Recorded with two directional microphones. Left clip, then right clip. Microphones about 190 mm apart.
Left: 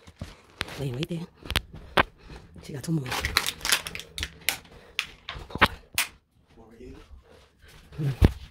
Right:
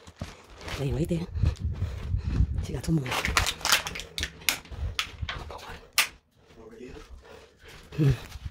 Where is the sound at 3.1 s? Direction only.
45° left (ahead or behind).